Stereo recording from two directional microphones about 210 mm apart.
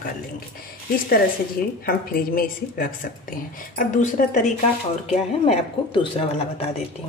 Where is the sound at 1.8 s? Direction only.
45° left (ahead or behind); by 6.7 s 25° left (ahead or behind).